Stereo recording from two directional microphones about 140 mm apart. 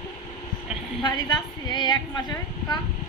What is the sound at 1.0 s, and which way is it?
A woman's voice, 30° left (ahead or behind).